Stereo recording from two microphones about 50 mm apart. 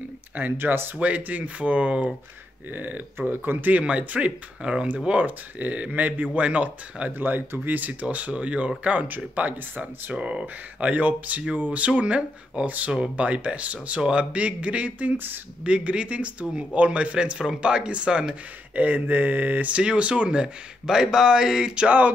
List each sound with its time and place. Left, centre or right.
0.4 s speech: right
0.9 s speech: right
2.7 s speech: right
7.2 s speech: right
10.1 s speech: centre
10.8 s speech: right
18.8 s speech: right
19.8 s speech: right